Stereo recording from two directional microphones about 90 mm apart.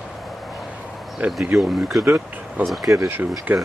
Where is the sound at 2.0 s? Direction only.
30° right (ahead or behind).